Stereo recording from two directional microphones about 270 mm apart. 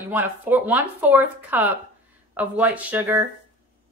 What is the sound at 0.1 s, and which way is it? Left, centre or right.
Speech, centre.